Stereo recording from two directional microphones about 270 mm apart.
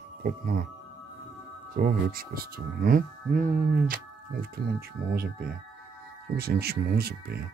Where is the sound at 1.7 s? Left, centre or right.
Right.